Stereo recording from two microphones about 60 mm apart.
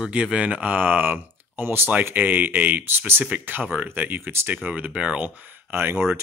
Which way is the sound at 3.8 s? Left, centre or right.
Right.